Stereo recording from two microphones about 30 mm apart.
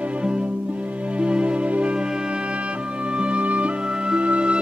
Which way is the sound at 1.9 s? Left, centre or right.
Right.